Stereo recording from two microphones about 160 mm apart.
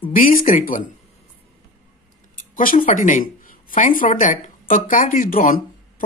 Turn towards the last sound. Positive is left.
turn(degrees=60)  # may be behind; listen again after turning